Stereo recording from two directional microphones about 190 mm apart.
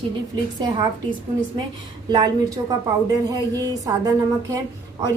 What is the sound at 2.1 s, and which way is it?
Speech, 20° right (ahead or behind).